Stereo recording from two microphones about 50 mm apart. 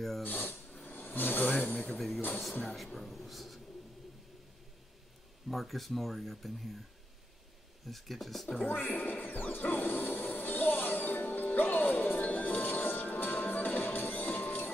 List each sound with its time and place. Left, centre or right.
0.2 s speech: left
0.8 s a sound: left
1.5 s speech: left
2.0 s speech: centre
5.5 s speech: centre
7.8 s speech: centre
8.6 s music: left